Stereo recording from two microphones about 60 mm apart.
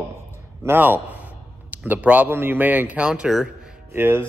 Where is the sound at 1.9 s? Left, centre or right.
Right.